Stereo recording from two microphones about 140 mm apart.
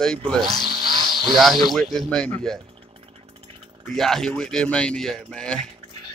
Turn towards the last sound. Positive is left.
turn(degrees=5)  # may be behind; listen again after turning